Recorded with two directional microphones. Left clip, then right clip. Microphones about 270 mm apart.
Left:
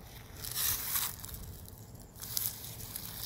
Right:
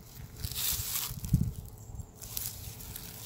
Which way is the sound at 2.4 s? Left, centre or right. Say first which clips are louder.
Left 2 dB; left.